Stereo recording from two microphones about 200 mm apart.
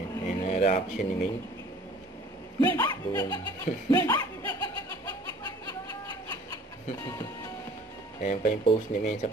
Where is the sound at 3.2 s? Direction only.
20° left (ahead or behind).